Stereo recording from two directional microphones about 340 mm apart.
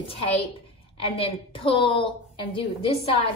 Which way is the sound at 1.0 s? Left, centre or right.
Centre.